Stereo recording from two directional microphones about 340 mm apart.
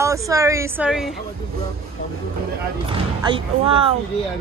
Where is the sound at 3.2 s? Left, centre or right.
Centre.